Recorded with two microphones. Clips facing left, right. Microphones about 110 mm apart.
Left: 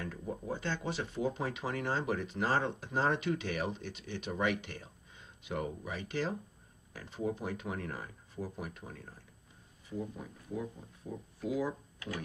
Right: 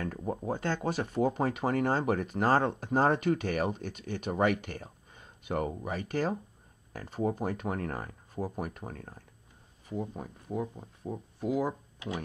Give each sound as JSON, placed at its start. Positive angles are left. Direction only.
{"t": 0.0, "sound": "speech", "side_deg": -50}
{"t": 12.0, "sound": "ratchet", "side_deg": -20}